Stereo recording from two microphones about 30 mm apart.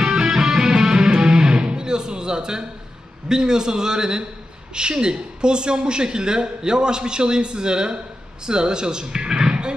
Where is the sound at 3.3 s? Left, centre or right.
Right.